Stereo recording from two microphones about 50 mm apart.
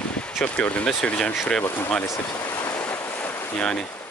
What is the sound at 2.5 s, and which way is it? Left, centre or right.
Waves, left.